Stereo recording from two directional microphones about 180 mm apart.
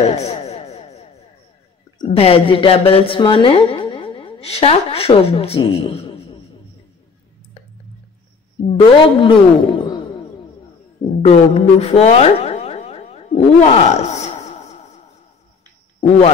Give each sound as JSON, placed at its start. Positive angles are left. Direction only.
{"t": 0.1, "sound": "a sound", "side_deg": 35}
{"t": 2.0, "sound": "speech", "side_deg": 35}
{"t": 8.7, "sound": "a man's voice", "side_deg": 30}
{"t": 11.2, "sound": "speech", "side_deg": 35}